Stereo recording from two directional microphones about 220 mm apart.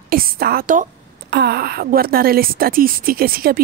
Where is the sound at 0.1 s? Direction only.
45° right (ahead or behind).